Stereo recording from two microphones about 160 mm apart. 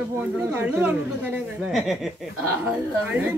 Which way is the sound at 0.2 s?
10° right (ahead or behind).